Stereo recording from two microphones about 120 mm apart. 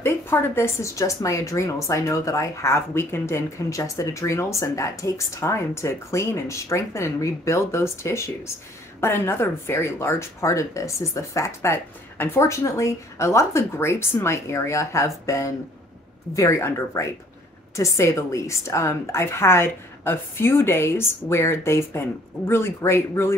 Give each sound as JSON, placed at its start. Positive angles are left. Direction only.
{"t": 0.0, "sound": "speech", "side_deg": 20}